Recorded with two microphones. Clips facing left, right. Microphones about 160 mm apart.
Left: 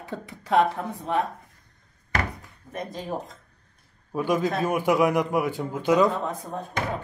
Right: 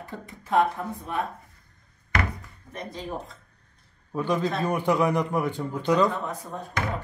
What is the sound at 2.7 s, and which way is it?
Speech, 5° left (ahead or behind).